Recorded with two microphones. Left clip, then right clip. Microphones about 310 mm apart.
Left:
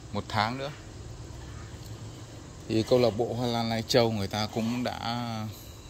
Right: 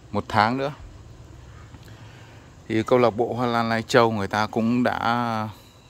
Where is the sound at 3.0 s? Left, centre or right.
Right.